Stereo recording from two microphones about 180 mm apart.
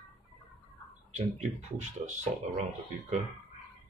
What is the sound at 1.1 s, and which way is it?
Speech, 40° right (ahead or behind).